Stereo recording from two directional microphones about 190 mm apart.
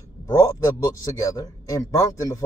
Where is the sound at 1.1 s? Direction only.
20° left (ahead or behind).